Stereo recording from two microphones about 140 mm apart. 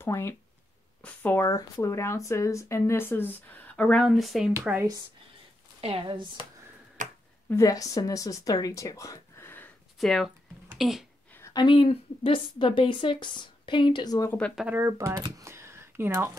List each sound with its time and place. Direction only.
0.0 s speech: 20° left (ahead or behind)
1.4 s speech: 20° left (ahead or behind)
4.1 s speech: centre (ahead or behind)
5.8 s speech: 40° right (ahead or behind)
7.0 s a sound: 65° right (ahead or behind)
7.4 s speech: 20° left (ahead or behind)
9.9 s speech: centre (ahead or behind)
11.5 s a woman's voice: 40° left (ahead or behind)
14.7 s speech: 20° right (ahead or behind)